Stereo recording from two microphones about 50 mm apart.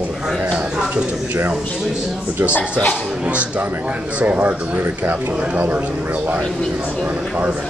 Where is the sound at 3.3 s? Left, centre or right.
Right.